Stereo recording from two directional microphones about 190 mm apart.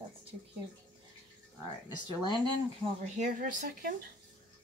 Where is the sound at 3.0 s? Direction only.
40° right (ahead or behind).